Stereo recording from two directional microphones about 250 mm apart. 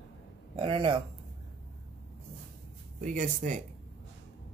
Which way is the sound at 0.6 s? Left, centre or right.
Right.